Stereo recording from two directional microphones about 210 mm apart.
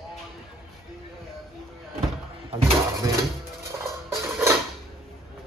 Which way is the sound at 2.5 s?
25° right (ahead or behind).